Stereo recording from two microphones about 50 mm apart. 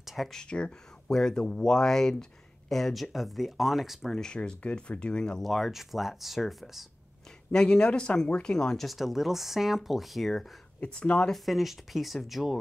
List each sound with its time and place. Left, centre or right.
0.0 s a sound: centre
0.3 s speech: centre
4.1 s speech: centre
5.4 s speech: centre
7.5 s speech: centre
8.8 s speech: centre
10.8 s speech: left
11.2 s speech: centre